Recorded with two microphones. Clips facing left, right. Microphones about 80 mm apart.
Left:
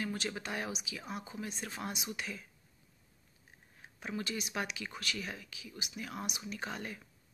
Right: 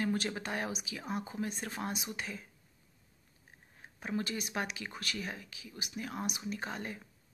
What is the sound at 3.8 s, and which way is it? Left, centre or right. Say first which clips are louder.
Speech: right 3 dB; right.